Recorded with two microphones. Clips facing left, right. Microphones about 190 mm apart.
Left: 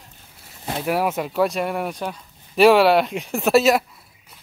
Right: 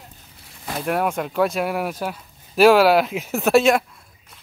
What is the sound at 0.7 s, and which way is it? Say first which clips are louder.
Speech: even; 5° left (ahead or behind).